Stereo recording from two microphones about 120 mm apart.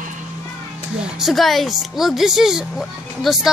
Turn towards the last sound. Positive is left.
turn(degrees=0)  # may be behind; listen again after turning